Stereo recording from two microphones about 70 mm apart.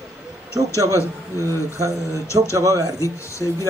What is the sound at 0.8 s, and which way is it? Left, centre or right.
A man's voice, right.